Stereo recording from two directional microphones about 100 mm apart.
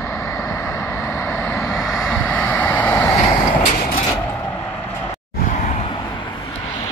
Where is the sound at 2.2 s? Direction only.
15° left (ahead or behind).